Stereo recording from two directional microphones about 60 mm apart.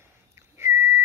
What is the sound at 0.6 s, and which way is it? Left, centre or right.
Whistle, right.